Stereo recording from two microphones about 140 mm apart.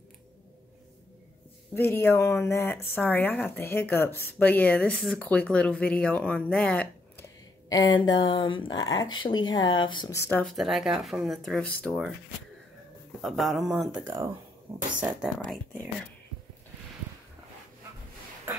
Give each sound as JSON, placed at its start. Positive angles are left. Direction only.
{"t": 1.7, "sound": "speech", "side_deg": 15}
{"t": 7.7, "sound": "speech", "side_deg": 30}
{"t": 10.1, "sound": "speech", "side_deg": 15}
{"t": 10.4, "sound": "speech", "side_deg": 0}
{"t": 13.2, "sound": "speech", "side_deg": 0}
{"t": 15.3, "sound": "speech", "side_deg": 0}